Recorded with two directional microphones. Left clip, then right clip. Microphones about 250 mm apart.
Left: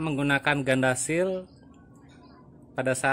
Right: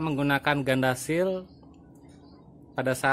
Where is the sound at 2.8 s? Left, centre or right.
Centre.